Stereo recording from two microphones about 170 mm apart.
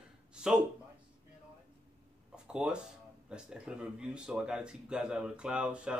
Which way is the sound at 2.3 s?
5° right (ahead or behind).